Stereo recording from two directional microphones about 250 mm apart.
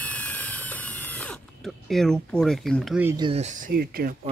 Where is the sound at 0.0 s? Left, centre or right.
Centre.